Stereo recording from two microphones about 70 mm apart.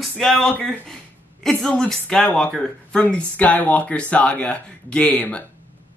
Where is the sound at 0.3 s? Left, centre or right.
Centre.